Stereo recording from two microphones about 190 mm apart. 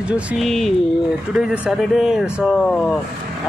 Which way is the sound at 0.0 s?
5° right (ahead or behind).